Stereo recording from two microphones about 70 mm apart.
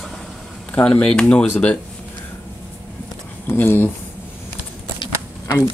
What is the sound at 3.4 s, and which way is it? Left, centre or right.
Speech, left.